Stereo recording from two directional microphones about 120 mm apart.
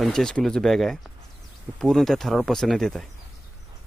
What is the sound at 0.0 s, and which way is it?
Speech, 5° left (ahead or behind).